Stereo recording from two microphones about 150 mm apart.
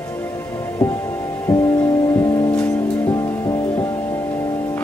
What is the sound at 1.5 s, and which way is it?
Music, 15° left (ahead or behind).